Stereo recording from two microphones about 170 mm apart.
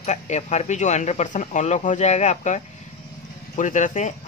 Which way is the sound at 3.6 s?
45° left (ahead or behind).